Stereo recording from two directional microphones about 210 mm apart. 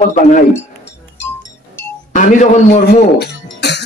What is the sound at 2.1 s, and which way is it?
Speech, 35° left (ahead or behind).